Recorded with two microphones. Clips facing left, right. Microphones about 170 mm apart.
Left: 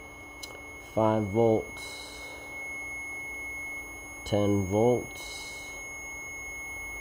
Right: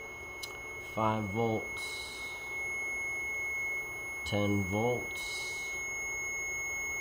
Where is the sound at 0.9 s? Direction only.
40° left (ahead or behind).